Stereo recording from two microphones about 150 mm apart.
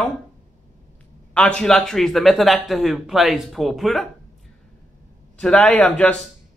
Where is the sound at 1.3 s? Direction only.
5° left (ahead or behind).